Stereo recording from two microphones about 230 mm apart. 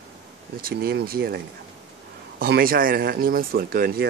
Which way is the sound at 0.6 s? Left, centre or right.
Right.